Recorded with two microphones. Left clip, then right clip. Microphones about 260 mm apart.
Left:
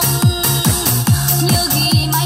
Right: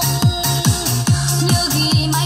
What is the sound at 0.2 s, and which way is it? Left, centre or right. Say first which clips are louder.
Music: left 1 dB; left.